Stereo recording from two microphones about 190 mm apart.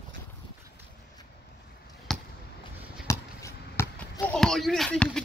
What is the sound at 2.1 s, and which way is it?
Basketball bounce, centre (ahead or behind).